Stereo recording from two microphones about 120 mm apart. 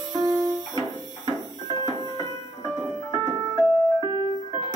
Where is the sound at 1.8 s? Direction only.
35° right (ahead or behind).